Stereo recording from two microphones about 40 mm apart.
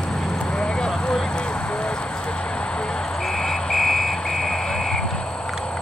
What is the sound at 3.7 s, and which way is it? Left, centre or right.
Vehicle, centre.